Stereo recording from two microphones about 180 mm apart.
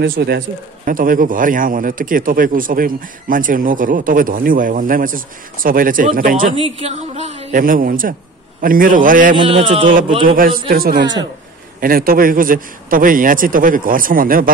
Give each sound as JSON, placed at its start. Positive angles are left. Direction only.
{"t": 0.1, "sound": "a man's voice", "side_deg": -65}
{"t": 0.8, "sound": "speech", "side_deg": -50}
{"t": 6.5, "sound": "a man's voice", "side_deg": -35}
{"t": 7.6, "sound": "speech", "side_deg": -50}
{"t": 9.3, "sound": "a man's voice", "side_deg": -30}
{"t": 10.2, "sound": "a man's voice", "side_deg": -50}
{"t": 11.0, "sound": "speech", "side_deg": -25}
{"t": 11.8, "sound": "speech", "side_deg": -55}